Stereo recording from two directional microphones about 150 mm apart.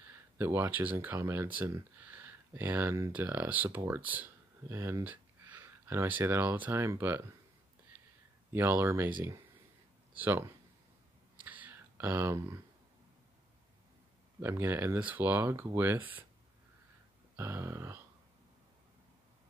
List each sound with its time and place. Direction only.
0.4 s speech: 15° right (ahead or behind)
8.5 s speech: 15° right (ahead or behind)
10.1 s speech: 10° right (ahead or behind)
11.3 s a sound: 10° right (ahead or behind)
14.4 s speech: 15° right (ahead or behind)
17.4 s speech: 15° right (ahead or behind)